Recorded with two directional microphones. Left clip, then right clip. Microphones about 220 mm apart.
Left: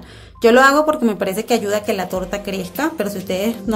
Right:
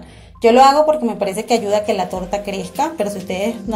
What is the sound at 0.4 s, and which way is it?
Speech, 15° left (ahead or behind).